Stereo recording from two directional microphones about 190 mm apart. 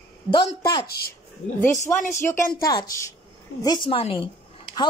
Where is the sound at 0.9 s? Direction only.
55° left (ahead or behind).